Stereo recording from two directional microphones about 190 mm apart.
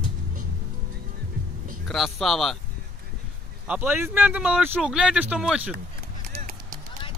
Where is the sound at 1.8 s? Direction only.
Centre (ahead or behind).